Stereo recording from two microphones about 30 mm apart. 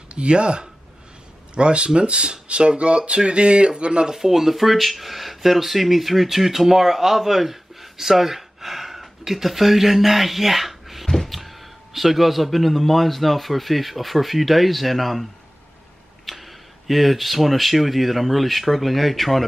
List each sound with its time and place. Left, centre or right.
0.1 s a man's voice: right
4.1 s speech: centre
16.3 s speech: centre